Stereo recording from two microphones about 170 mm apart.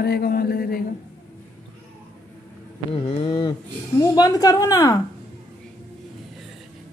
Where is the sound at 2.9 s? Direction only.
35° left (ahead or behind).